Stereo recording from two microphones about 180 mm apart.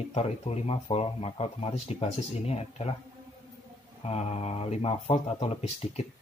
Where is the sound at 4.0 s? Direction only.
35° left (ahead or behind).